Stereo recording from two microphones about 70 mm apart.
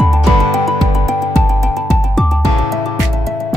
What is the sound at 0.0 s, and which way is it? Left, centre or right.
Music, centre.